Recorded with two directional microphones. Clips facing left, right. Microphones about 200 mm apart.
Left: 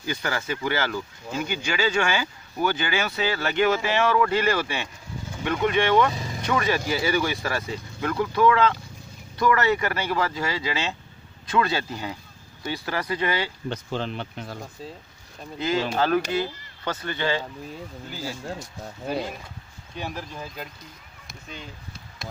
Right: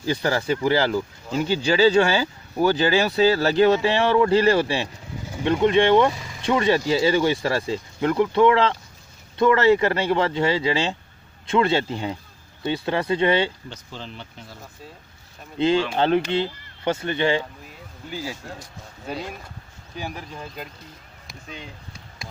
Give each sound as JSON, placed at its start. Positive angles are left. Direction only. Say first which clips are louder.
{"t": 0.0, "sound": "speech", "louder": "right 6 dB", "side_deg": -35}
{"t": 13.7, "sound": "speech", "louder": "left 8 dB", "side_deg": 65}
{"t": 15.6, "sound": "speech", "louder": "right 4 dB", "side_deg": -30}
{"t": 20.0, "sound": "speech", "louder": "even", "side_deg": 0}